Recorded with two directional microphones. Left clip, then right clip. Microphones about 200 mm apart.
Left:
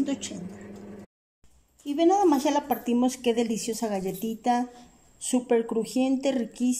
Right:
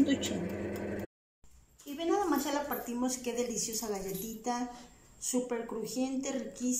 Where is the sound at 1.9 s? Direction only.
50° left (ahead or behind).